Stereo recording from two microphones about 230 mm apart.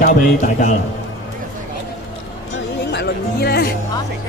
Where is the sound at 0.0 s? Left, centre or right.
Left.